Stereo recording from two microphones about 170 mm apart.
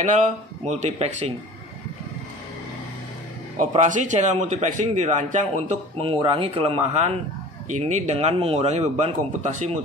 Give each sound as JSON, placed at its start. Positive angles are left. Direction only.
{"t": 0.7, "sound": "speech", "side_deg": -40}
{"t": 3.5, "sound": "a man's voice", "side_deg": -45}
{"t": 5.9, "sound": "speech", "side_deg": -30}